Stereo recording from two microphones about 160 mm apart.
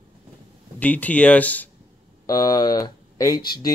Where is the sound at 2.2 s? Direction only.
25° left (ahead or behind).